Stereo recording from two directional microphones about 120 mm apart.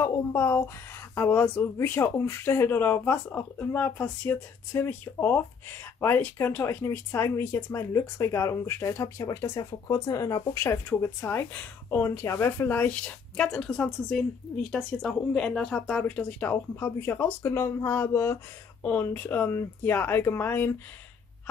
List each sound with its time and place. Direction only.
0.0 s speech: 20° left (ahead or behind)